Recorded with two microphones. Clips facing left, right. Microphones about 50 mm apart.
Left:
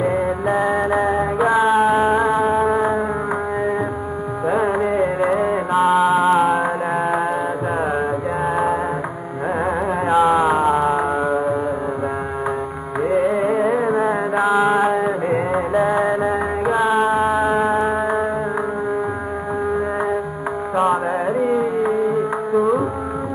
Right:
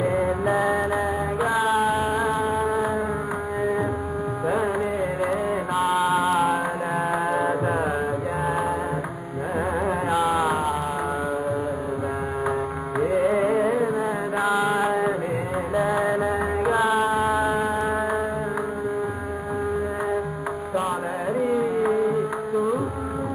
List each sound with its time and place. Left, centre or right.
0.0 s music: centre
4.5 s music: centre
10.1 s a sound: centre
13.1 s music: centre
13.9 s a sound: centre
14.4 s mantra: centre
16.6 s music: centre
17.2 s a sound: left
21.3 s music: centre